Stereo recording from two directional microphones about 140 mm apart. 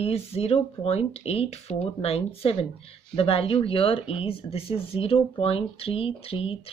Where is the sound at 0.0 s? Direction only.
45° left (ahead or behind).